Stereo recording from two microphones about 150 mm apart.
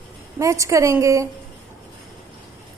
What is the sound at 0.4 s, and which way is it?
Speech, 20° right (ahead or behind).